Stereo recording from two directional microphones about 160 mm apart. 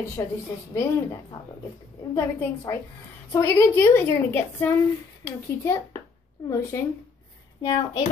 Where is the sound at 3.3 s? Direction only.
15° left (ahead or behind).